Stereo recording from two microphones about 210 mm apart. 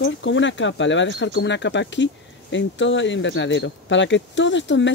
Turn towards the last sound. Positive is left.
turn(degrees=60)  # may be behind; listen again after turning